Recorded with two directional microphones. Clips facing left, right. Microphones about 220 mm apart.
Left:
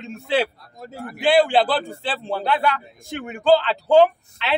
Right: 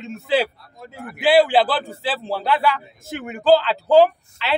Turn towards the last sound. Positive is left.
turn(degrees=0)  # may be behind; listen again after turning